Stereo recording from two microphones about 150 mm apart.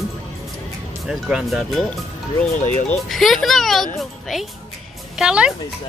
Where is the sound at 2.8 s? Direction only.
Centre (ahead or behind).